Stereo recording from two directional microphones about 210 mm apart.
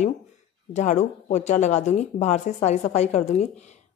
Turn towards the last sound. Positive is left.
turn(degrees=30)  # may be behind; listen again after turning